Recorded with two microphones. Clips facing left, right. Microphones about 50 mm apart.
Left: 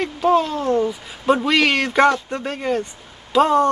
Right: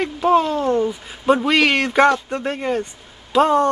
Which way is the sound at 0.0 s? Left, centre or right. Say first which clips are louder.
Right 1 dB; centre.